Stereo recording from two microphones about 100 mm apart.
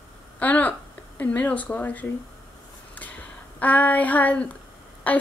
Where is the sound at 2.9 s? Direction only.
15° left (ahead or behind).